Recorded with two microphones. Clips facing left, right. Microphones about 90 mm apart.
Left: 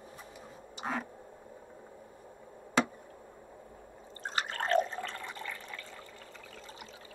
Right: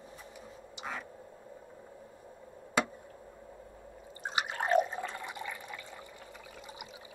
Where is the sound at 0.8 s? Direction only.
40° left (ahead or behind).